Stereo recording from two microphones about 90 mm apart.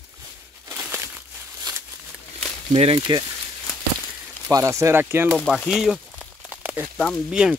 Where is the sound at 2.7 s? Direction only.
90° right.